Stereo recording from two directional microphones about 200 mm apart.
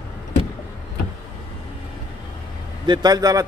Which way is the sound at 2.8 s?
20° right (ahead or behind).